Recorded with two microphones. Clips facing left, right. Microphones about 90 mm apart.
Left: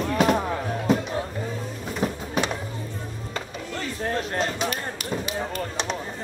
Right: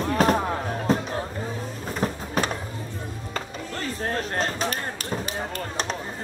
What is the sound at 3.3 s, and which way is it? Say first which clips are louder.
Music: even; 40° right (ahead or behind).